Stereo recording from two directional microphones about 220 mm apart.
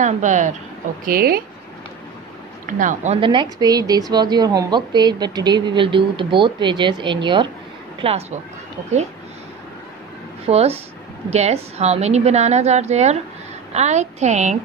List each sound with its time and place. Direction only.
0.0 s a woman's voice: 35° right (ahead or behind)
2.6 s speech: 35° right (ahead or behind)
10.4 s a woman's voice: 25° right (ahead or behind)